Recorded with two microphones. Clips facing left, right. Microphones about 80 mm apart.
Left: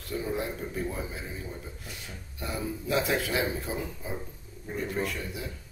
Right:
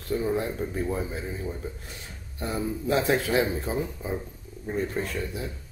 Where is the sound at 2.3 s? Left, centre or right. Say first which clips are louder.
Right 4 dB; right.